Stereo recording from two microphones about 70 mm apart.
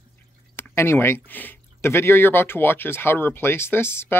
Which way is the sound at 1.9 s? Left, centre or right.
Left.